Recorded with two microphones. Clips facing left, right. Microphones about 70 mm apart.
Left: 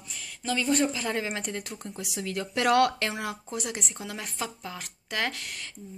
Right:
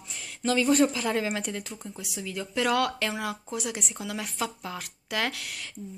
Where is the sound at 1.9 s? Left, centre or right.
Left.